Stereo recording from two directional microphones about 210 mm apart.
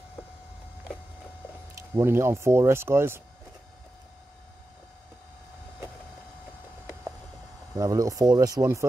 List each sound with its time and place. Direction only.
2.0 s speech: 10° right (ahead or behind)
7.7 s speech: 15° right (ahead or behind)